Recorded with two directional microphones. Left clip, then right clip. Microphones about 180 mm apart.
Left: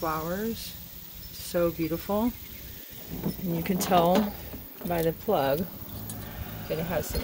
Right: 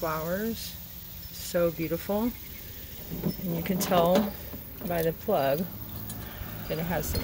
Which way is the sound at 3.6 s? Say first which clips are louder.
Left 1 dB; 25° left (ahead or behind).